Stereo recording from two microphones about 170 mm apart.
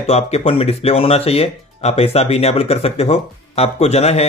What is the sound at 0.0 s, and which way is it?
Speech, 35° left (ahead or behind).